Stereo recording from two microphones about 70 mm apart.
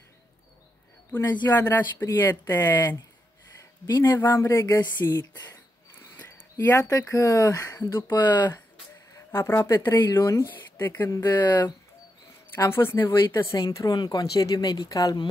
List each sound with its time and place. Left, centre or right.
1.1 s speech: left
1.7 s speech: left
2.1 s speech: left
3.9 s speech: left
4.3 s speech: left
5.9 s a sound: left
6.5 s speech: left
7.8 s speech: left
8.2 s speech: left
9.3 s speech: left
10.2 s speech: left
10.8 s speech: left
12.5 s speech: left
13.7 s speech: left